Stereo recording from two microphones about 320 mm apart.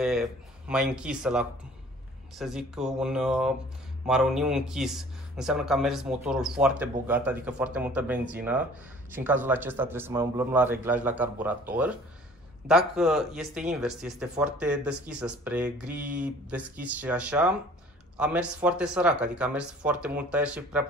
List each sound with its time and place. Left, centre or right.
0.0 s speech: centre